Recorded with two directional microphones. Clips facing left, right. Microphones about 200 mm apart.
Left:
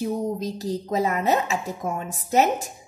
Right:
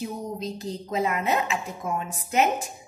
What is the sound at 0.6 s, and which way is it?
A woman's voice, 40° left (ahead or behind).